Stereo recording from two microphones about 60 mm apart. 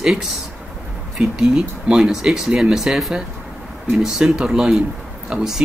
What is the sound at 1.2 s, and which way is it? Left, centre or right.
Speech, centre.